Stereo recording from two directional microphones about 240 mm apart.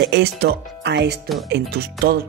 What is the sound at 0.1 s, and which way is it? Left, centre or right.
Speech, right.